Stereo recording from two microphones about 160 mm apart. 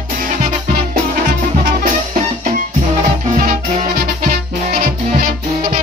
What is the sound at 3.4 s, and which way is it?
Music, 50° right (ahead or behind).